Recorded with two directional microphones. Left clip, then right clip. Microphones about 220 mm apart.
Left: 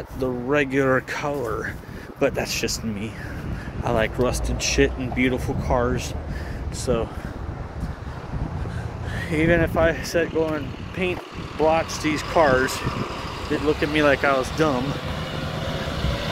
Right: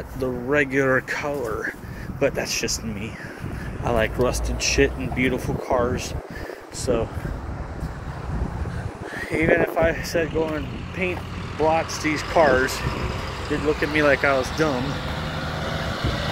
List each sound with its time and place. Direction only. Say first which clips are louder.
0.2 s speech: even; 10° left (ahead or behind)
3.8 s speech: even; centre (ahead or behind)
9.2 s speech: right 1 dB; 5° left (ahead or behind)
12.4 s speech: right 1 dB; 5° left (ahead or behind)
12.7 s speech: even; 50° left (ahead or behind)
13.9 s speech: even; 15° left (ahead or behind)
14.8 s vehicle: even; 35° left (ahead or behind)